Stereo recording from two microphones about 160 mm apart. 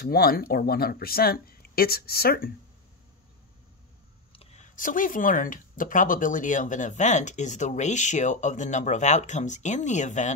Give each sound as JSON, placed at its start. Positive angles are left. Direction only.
{"t": 0.0, "sound": "speech", "side_deg": 70}
{"t": 4.3, "sound": "a sound", "side_deg": 40}
{"t": 4.7, "sound": "speech", "side_deg": 55}